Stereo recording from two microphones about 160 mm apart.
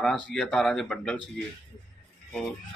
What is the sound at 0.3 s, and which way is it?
Speech, 5° left (ahead or behind).